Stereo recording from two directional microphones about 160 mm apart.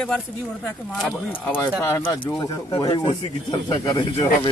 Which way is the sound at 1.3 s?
10° left (ahead or behind).